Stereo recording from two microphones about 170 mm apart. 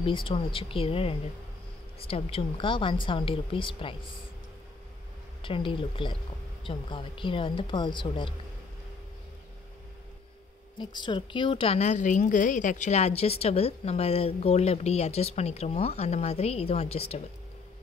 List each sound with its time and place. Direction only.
0.0 s a woman's voice: 30° left (ahead or behind)
5.4 s speech: 30° left (ahead or behind)
10.8 s a woman's voice: 25° left (ahead or behind)